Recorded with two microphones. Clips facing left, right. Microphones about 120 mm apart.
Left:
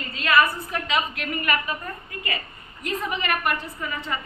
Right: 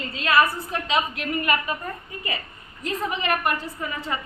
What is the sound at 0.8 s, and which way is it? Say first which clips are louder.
Speech: right 2 dB; 30° right (ahead or behind).